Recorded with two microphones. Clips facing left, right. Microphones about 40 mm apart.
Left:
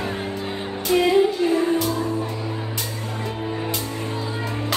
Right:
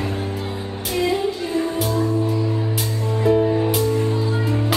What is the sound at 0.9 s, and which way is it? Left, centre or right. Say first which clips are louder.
Music: left 4 dB; left.